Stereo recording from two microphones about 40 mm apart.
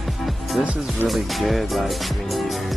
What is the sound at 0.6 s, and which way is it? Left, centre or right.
Speech, right.